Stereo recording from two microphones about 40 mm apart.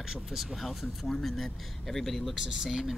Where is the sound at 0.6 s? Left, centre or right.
Centre.